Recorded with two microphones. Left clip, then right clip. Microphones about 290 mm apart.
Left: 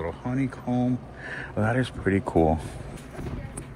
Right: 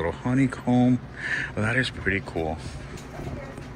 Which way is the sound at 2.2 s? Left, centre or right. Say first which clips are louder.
Left 7 dB; left.